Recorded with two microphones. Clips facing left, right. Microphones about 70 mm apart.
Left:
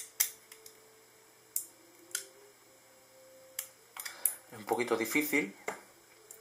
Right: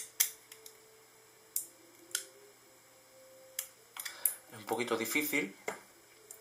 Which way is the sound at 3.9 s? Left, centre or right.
Centre.